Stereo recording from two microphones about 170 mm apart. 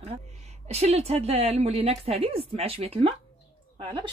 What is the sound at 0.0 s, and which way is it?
Speech, 40° right (ahead or behind).